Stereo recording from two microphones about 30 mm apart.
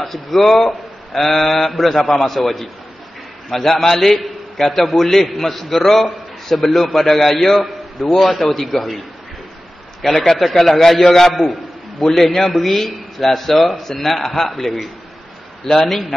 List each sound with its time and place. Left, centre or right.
0.0 s a man's voice: centre
4.6 s a man's voice: left
4.9 s a man's voice: centre
10.0 s a man's voice: centre
12.3 s a man's voice: centre
12.5 s a man's voice: centre